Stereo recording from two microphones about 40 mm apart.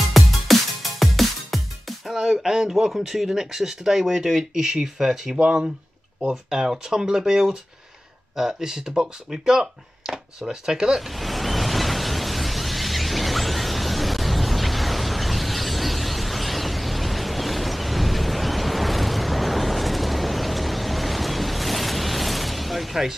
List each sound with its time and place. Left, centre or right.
0.1 s music: centre
2.4 s speech: centre
5.4 s speech: right
11.0 s a sound: centre